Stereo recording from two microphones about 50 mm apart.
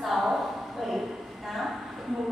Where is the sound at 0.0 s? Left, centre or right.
Centre.